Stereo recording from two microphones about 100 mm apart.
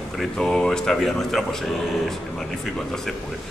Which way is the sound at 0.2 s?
5° left (ahead or behind).